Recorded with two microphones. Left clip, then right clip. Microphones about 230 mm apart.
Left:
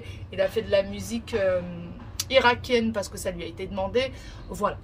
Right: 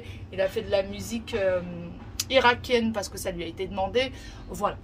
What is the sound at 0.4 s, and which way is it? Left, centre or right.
A woman's voice, centre.